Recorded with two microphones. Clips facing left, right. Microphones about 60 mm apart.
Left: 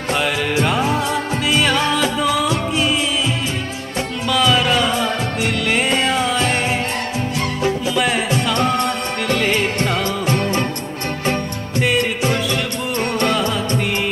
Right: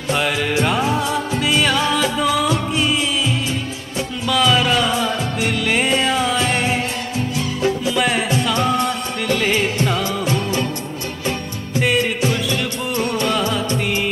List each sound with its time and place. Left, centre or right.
0.1 s music: centre
4.3 s music: centre
7.9 s music: centre
10.2 s music: left
11.8 s music: centre
13.3 s music: centre